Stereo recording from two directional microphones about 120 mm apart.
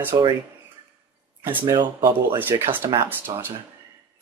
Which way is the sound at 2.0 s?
15° right (ahead or behind).